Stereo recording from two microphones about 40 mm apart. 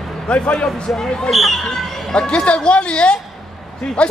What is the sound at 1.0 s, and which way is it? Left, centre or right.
Speech, centre.